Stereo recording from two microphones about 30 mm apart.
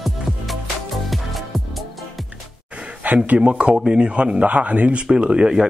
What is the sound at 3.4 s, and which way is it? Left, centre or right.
A man's voice, right.